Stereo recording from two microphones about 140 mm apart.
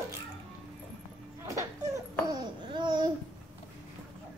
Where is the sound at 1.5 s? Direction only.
20° right (ahead or behind).